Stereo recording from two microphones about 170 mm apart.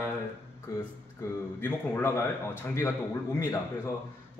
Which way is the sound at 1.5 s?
10° left (ahead or behind).